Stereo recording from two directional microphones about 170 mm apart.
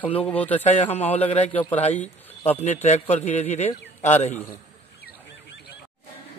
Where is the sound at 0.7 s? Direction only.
40° left (ahead or behind).